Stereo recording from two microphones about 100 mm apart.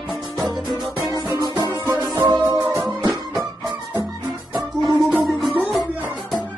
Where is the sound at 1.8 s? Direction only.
25° right (ahead or behind).